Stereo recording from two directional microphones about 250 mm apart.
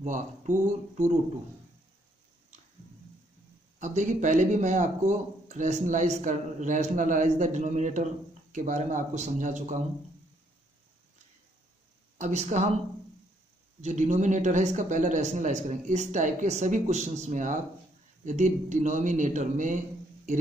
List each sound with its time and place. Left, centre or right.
0.0 s speech: right
3.8 s speech: right
12.2 s speech: right
13.7 s speech: right